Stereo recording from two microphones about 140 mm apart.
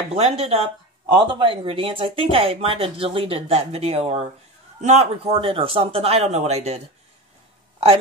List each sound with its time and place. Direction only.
0.1 s speech: 45° right (ahead or behind)